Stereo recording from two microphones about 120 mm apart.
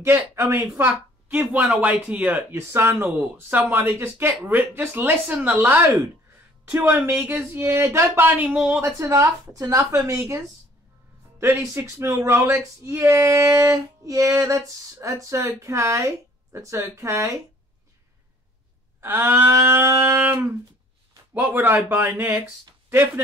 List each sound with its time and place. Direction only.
0.0 s a woman's voice: 20° right (ahead or behind)
8.8 s speech: 25° right (ahead or behind)
18.9 s a woman's voice: 20° right (ahead or behind)